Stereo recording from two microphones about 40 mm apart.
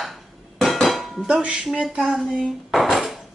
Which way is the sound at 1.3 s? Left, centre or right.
Right.